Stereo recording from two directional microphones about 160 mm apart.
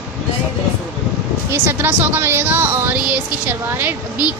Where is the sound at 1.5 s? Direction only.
15° right (ahead or behind).